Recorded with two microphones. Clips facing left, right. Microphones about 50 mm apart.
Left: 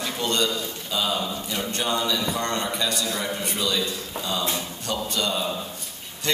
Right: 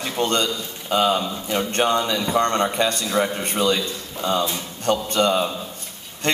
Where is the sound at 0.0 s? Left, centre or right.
Right.